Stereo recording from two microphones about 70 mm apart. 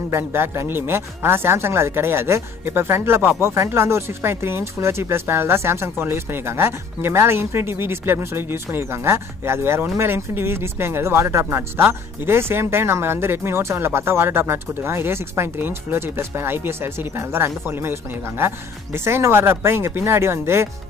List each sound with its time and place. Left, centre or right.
0.1 s speech: right
19.0 s speech: right